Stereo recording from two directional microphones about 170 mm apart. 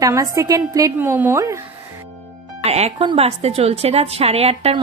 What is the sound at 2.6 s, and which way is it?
A woman's voice, 40° right (ahead or behind).